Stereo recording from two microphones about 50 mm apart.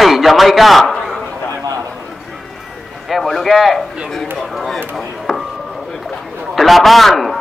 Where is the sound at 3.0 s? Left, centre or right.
Centre.